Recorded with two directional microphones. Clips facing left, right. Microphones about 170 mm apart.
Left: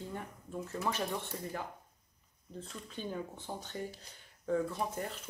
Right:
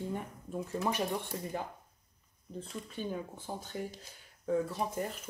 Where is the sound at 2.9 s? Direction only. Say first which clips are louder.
Right 1 dB; 10° right (ahead or behind).